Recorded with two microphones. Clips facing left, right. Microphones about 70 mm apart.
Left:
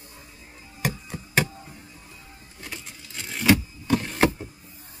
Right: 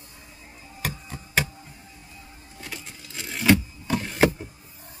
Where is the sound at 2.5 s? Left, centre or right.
Centre.